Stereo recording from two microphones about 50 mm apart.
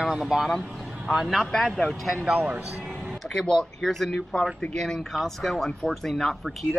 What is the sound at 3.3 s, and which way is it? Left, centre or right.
Speech, centre.